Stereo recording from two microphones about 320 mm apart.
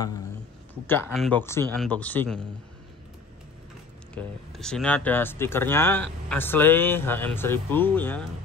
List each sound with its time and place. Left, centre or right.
0.8 s speech: centre
4.1 s speech: centre